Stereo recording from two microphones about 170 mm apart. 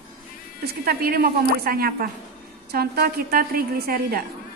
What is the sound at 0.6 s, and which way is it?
A woman's voice, 65° right (ahead or behind).